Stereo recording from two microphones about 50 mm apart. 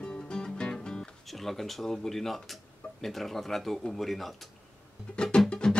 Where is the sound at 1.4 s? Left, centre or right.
Centre.